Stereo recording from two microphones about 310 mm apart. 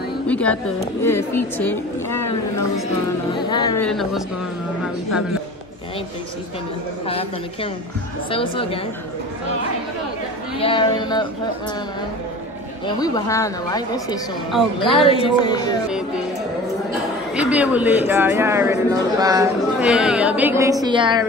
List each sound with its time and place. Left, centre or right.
0.3 s a sound: centre
1.0 s speech: centre
3.3 s speech: centre
7.1 s speech: centre
10.6 s speech: centre
12.8 s speech: centre
17.4 s speech: centre